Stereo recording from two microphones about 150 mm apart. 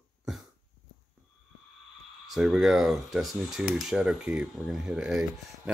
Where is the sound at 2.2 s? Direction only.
Centre (ahead or behind).